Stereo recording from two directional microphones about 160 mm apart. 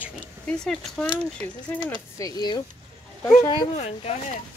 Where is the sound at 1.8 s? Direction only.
20° left (ahead or behind).